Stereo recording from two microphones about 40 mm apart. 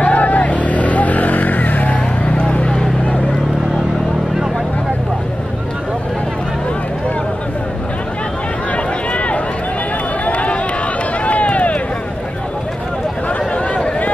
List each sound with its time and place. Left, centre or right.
0.0 s vehicle: left
2.2 s a sound: left
8.7 s run: left